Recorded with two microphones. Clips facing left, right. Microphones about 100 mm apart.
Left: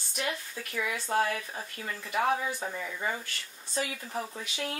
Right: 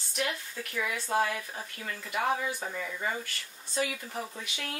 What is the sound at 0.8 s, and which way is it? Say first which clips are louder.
Speech: even; 20° right (ahead or behind).